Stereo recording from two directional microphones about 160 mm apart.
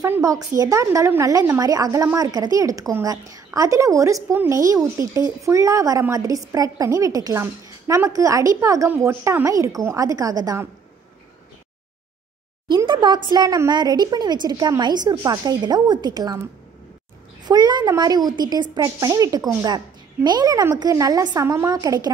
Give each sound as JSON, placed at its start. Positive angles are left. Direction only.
{"t": 0.0, "sound": "a woman's voice", "side_deg": -20}
{"t": 12.6, "sound": "a woman's voice", "side_deg": -30}
{"t": 17.5, "sound": "a woman's voice", "side_deg": -25}